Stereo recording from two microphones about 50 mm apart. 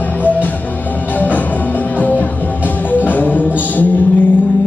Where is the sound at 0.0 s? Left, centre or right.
Left.